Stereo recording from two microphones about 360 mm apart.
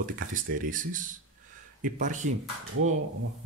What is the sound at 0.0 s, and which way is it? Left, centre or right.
Speech, right.